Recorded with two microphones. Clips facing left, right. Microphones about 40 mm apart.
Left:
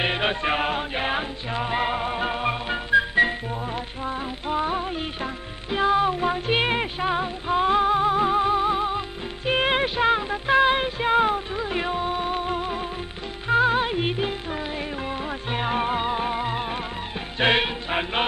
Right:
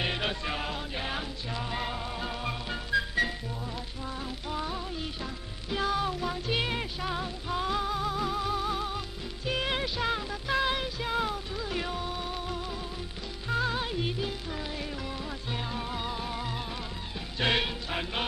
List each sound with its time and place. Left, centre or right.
0.0 s music: left